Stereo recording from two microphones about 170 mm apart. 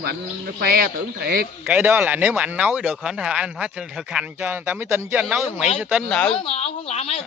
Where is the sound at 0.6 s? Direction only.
65° right (ahead or behind).